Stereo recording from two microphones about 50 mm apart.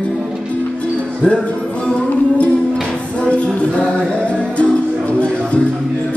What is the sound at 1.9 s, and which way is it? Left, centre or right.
Music, left.